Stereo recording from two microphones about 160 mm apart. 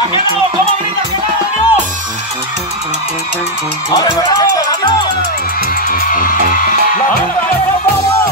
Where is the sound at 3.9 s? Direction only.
25° left (ahead or behind).